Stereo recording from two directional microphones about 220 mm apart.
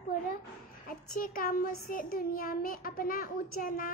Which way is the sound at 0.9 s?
40° left (ahead or behind).